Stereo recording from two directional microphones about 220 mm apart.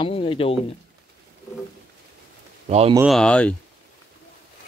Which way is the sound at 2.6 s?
30° right (ahead or behind).